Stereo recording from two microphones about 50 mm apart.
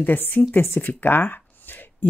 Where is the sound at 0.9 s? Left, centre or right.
Left.